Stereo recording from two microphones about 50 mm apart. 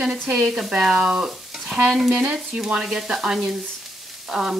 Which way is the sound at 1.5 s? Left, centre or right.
Centre.